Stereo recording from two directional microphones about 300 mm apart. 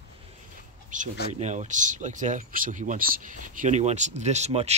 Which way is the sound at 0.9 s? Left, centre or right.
Right.